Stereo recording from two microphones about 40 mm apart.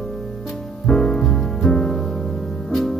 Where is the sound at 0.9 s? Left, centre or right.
Centre.